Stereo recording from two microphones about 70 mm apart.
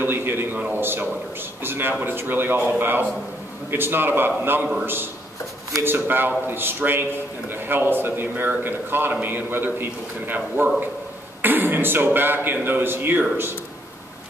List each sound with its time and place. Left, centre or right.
0.0 s a man's voice: right